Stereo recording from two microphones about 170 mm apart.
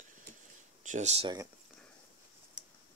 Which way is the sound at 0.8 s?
45° right (ahead or behind).